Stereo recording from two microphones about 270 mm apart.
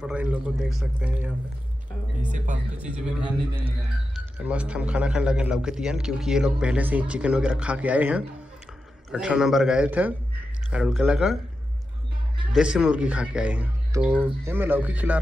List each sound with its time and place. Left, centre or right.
0.0 s a man's voice: centre
2.2 s speech: right
2.8 s a man's voice: centre
12.5 s a man's voice: centre